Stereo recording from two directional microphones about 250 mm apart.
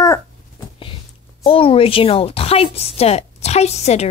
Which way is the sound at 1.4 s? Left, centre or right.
Left.